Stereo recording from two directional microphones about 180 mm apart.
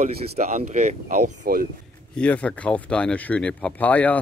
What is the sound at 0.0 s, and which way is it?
Speech, 40° right (ahead or behind).